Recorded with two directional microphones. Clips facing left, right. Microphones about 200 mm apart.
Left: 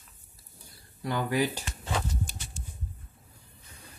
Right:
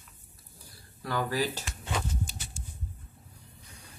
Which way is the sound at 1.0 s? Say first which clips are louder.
Left 2 dB; 20° left (ahead or behind).